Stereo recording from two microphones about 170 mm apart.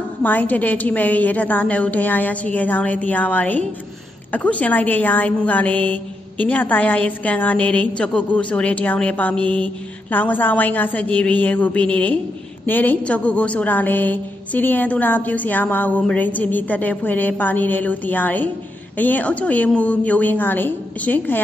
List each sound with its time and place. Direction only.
0.2 s a woman's voice: 10° left (ahead or behind)